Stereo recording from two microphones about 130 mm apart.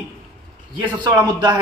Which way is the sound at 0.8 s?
35° right (ahead or behind).